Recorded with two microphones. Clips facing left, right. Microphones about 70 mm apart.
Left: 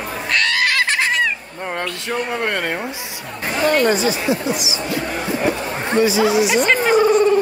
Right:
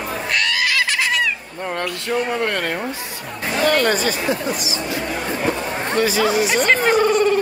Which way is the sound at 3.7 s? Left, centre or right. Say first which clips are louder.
Left 3 dB; right.